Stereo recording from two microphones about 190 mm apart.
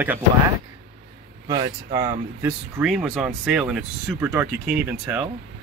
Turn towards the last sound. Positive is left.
turn(degrees=-5)  # may be behind; listen again after turning